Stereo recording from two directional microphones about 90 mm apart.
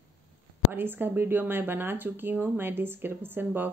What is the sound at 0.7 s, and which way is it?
Speech, 25° right (ahead or behind).